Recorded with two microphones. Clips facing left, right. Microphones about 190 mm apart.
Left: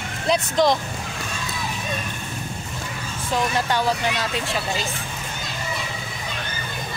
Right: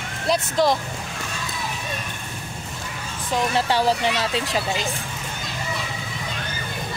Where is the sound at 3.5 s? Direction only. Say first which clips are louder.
Right 2 dB; 30° right (ahead or behind).